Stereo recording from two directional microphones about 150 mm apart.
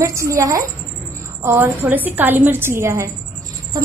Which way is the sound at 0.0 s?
20° right (ahead or behind).